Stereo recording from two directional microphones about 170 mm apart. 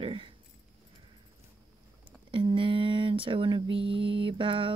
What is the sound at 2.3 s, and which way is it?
Speech, 30° right (ahead or behind).